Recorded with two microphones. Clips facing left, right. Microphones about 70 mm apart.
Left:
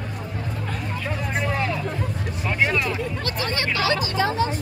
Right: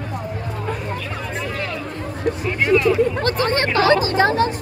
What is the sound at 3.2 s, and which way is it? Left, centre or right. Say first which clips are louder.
Speech: right 7 dB; right.